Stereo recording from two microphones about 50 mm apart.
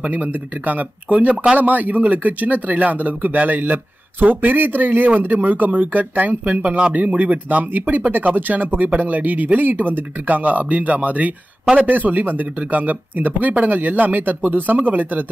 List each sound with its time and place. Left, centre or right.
0.0 s speech: right